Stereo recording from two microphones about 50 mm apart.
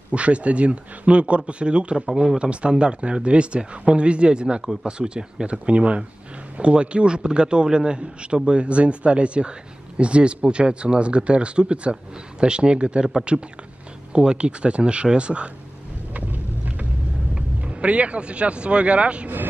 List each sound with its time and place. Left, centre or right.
0.1 s speech: right
16.1 s vehicle: right
17.6 s speech: right